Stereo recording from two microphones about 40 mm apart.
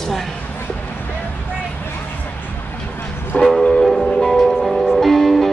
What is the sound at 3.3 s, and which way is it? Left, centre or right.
Train, left.